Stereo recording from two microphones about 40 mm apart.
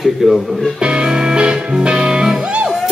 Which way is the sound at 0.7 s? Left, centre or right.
Right.